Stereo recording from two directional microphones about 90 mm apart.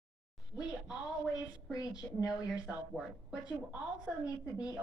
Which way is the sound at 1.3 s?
45° left (ahead or behind).